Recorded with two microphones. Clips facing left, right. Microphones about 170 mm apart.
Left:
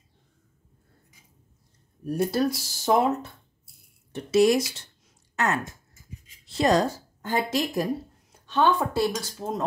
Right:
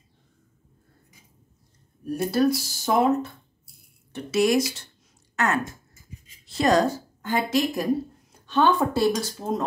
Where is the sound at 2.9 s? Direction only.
25° left (ahead or behind).